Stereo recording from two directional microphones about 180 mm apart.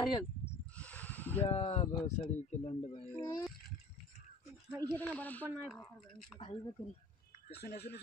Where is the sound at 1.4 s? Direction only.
35° left (ahead or behind).